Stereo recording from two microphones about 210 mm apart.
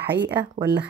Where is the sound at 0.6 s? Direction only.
40° right (ahead or behind).